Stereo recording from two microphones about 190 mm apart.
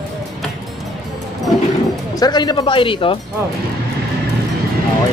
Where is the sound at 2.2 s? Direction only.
20° left (ahead or behind).